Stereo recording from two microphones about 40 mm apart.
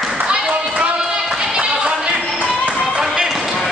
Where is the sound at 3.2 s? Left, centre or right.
Centre.